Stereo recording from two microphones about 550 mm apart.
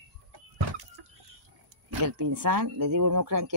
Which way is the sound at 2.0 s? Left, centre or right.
Right.